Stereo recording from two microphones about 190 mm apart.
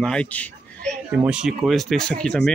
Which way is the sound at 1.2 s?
5° right (ahead or behind).